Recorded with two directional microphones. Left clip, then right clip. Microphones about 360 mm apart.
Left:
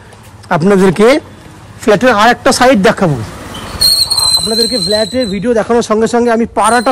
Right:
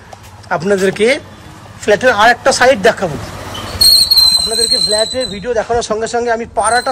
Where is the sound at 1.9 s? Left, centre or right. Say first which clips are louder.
Left 1 dB; left.